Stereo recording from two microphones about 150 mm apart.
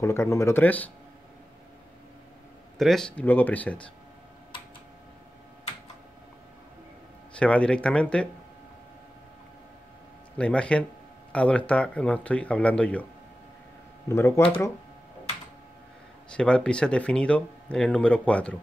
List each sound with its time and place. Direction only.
0.0 s speech: 20° left (ahead or behind)
2.8 s speech: centre (ahead or behind)
7.3 s speech: 10° left (ahead or behind)
10.3 s speech: 5° left (ahead or behind)
14.0 s speech: 20° left (ahead or behind)
16.3 s speech: 5° left (ahead or behind)